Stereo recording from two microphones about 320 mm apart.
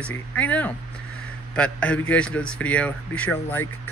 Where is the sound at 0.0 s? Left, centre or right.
Centre.